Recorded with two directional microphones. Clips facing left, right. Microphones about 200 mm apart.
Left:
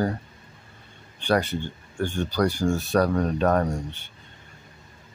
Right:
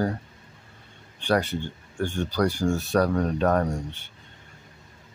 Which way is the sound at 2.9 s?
20° left (ahead or behind).